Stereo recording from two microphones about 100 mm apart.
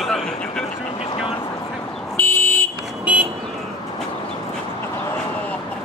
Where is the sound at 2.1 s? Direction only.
20° left (ahead or behind).